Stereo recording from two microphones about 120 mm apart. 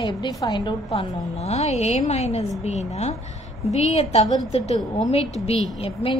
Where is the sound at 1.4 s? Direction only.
65° left (ahead or behind).